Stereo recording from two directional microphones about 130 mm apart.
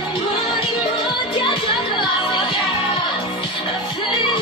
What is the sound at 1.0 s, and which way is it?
Music, 40° left (ahead or behind).